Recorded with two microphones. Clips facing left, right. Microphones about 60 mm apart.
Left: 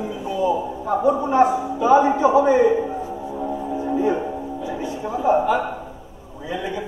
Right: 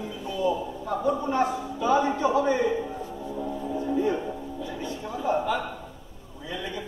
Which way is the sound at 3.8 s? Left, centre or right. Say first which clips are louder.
Left 5 dB; centre.